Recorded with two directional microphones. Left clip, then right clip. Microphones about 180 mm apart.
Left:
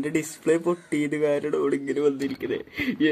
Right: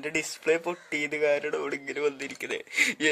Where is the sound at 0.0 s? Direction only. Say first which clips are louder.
Left 3 dB; 20° right (ahead or behind).